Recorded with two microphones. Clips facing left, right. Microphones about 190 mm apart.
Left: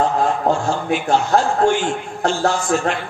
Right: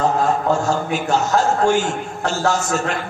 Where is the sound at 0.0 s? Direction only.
40° right (ahead or behind).